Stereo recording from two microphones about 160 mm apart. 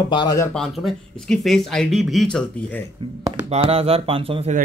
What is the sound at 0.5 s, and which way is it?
Speech, centre (ahead or behind).